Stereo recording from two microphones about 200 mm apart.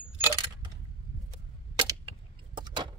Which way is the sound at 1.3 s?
25° right (ahead or behind).